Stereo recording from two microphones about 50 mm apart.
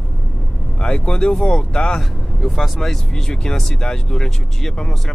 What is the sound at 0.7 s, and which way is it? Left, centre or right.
Speech, centre.